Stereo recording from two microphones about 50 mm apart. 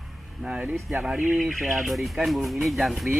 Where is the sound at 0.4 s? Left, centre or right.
Right.